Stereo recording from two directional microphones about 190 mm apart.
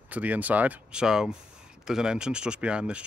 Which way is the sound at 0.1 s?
10° right (ahead or behind).